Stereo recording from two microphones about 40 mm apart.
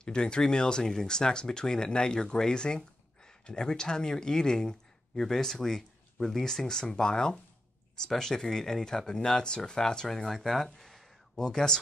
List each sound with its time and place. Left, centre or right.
0.0 s speech: left